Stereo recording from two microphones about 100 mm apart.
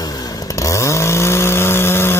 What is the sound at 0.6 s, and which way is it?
Chainsaw, 30° left (ahead or behind).